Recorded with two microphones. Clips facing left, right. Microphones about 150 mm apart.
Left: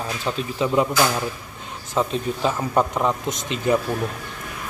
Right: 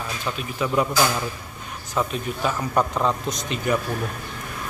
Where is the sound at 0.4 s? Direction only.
25° left (ahead or behind).